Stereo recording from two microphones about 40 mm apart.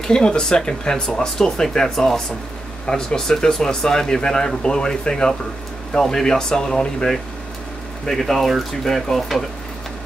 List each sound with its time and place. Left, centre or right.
0.0 s speech: centre
8.1 s speech: centre